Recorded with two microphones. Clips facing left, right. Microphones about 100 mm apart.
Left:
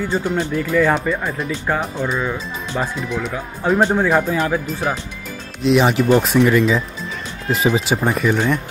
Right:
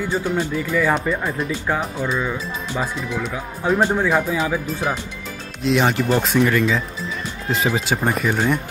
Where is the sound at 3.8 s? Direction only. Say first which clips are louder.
Left 3 dB; 15° left (ahead or behind).